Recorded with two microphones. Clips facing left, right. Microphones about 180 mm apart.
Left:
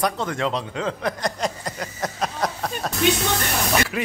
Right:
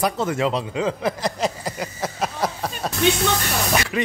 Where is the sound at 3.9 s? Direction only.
5° left (ahead or behind).